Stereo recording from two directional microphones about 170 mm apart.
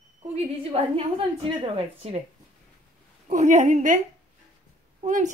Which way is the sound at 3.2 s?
45° right (ahead or behind).